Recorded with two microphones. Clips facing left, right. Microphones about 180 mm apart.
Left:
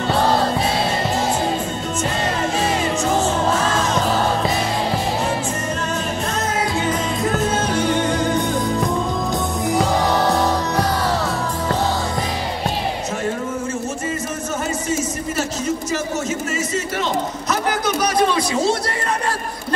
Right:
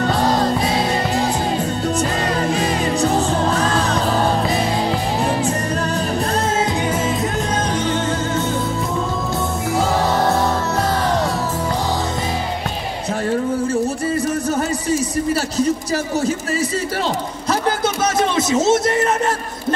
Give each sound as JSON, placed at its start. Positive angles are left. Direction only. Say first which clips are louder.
{"t": 2.6, "sound": "music", "louder": "right 2 dB", "side_deg": -35}
{"t": 7.7, "sound": "music", "louder": "left 1 dB", "side_deg": 10}
{"t": 15.5, "sound": "a sound", "louder": "right 4 dB", "side_deg": -35}